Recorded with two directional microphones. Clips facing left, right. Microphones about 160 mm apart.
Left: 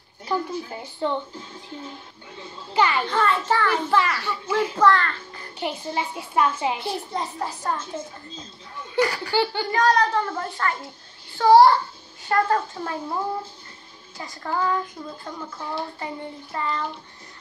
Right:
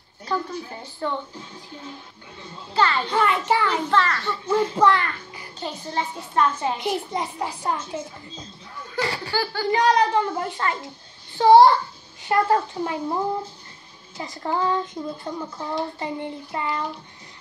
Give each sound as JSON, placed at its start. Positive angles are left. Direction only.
{"t": 0.3, "sound": "a child's voice", "side_deg": 15}
{"t": 2.7, "sound": "a child's voice", "side_deg": 15}
{"t": 3.1, "sound": "a child's voice", "side_deg": -15}
{"t": 3.9, "sound": "a child's voice", "side_deg": 10}
{"t": 4.7, "sound": "a child's voice", "side_deg": -15}
{"t": 5.6, "sound": "a child's voice", "side_deg": 15}
{"t": 6.8, "sound": "a child's voice", "side_deg": -15}
{"t": 9.0, "sound": "speech", "side_deg": -25}
{"t": 9.3, "sound": "speech", "side_deg": 20}
{"t": 9.7, "sound": "a child's voice", "side_deg": -15}